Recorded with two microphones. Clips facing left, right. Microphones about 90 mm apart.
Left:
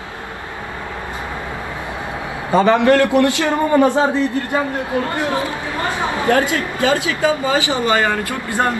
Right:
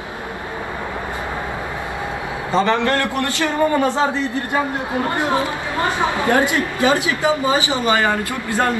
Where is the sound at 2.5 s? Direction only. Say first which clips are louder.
Left 5 dB; 15° left (ahead or behind).